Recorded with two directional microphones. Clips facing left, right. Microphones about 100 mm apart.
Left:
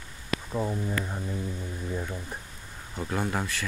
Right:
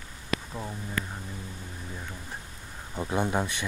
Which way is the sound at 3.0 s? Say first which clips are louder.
Right 2 dB; 20° right (ahead or behind).